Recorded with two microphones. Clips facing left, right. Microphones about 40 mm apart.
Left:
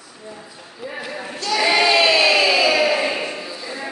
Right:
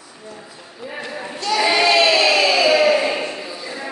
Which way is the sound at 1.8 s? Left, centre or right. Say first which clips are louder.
Right 1 dB; centre.